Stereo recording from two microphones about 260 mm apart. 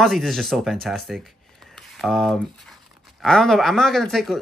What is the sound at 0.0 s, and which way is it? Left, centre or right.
Speech, centre.